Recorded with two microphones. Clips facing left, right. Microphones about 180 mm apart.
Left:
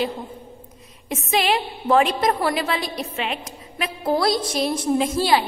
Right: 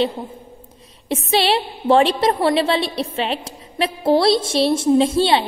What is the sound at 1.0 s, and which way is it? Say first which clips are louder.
A woman's voice: right 3 dB; 30° right (ahead or behind).